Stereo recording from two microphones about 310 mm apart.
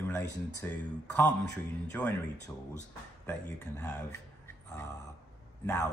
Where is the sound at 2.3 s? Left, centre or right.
Left.